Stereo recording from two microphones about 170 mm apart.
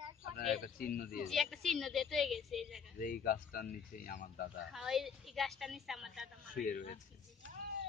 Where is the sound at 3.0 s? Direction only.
55° left (ahead or behind).